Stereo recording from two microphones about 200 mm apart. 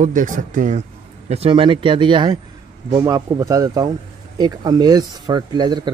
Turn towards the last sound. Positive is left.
turn(degrees=-20)  # may be behind; listen again after turning